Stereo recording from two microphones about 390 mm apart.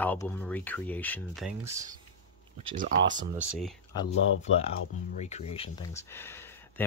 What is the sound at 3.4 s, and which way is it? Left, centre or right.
Speech, centre.